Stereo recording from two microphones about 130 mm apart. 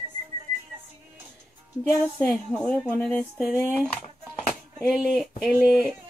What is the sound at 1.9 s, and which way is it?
Speech, 10° left (ahead or behind).